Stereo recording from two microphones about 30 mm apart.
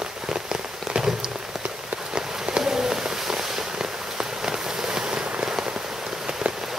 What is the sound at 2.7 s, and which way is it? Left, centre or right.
Fireworks, centre.